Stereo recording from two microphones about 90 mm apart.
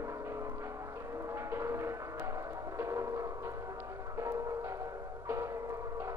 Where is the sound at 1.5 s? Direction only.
30° right (ahead or behind).